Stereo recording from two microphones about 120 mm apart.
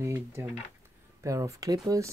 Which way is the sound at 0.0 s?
20° right (ahead or behind).